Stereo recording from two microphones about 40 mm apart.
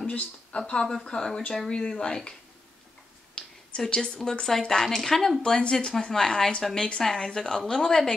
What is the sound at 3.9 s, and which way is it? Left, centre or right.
Speech, centre.